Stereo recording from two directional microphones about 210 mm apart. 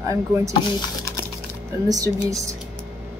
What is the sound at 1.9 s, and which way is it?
Speech, 15° right (ahead or behind).